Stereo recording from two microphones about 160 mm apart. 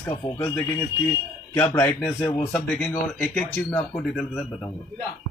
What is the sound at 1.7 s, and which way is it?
Speech, 15° left (ahead or behind).